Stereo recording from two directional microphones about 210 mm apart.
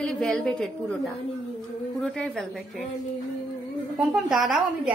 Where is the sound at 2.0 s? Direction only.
Centre (ahead or behind).